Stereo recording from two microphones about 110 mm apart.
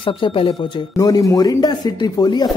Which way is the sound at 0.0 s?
55° left (ahead or behind).